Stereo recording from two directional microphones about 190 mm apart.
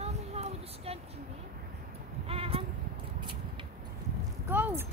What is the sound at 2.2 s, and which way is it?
Speech, 30° right (ahead or behind).